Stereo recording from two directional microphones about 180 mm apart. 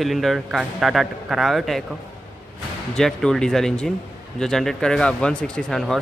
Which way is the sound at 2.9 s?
5° left (ahead or behind).